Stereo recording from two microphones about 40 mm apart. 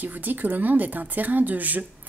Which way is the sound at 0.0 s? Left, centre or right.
Right.